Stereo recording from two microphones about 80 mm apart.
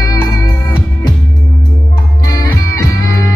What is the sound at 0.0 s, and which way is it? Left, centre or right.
Music, left.